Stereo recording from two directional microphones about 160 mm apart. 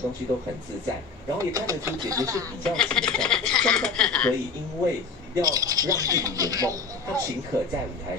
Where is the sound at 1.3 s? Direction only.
20° right (ahead or behind).